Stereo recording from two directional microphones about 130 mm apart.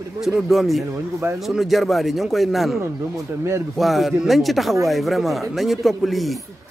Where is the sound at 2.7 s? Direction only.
20° right (ahead or behind).